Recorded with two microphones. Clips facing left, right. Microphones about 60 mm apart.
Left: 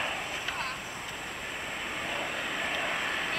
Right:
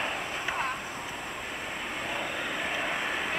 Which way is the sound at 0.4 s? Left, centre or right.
Centre.